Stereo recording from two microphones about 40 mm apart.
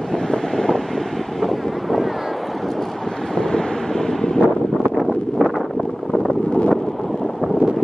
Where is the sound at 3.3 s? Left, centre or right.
Centre.